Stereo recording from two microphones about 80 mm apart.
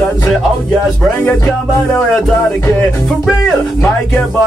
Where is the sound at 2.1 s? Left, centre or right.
Centre.